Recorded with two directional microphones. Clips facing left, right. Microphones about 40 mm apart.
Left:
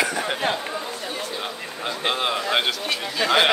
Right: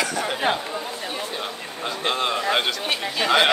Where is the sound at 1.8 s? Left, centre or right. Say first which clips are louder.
Even; centre.